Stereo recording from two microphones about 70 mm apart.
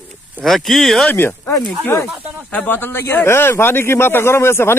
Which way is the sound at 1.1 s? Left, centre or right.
Left.